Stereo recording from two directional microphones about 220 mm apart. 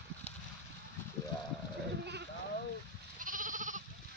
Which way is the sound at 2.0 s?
50° right (ahead or behind).